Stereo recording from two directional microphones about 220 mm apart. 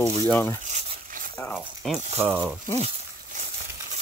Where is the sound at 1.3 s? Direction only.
10° left (ahead or behind).